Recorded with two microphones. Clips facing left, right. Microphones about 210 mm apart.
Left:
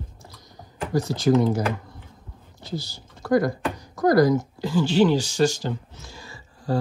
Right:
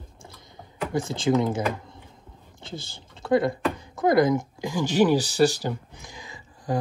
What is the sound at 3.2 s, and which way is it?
Speech, 25° right (ahead or behind).